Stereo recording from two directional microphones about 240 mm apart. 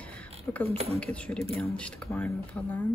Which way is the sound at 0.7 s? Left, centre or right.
Right.